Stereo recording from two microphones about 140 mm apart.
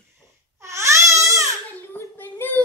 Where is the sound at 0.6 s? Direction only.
20° right (ahead or behind).